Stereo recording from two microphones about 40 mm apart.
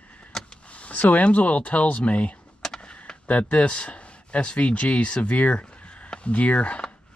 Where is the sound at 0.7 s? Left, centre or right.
Left.